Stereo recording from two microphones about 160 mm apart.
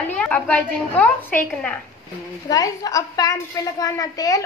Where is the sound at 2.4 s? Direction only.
25° left (ahead or behind).